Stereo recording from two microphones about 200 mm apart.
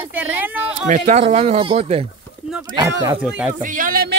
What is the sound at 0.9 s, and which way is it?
Speech, 35° right (ahead or behind).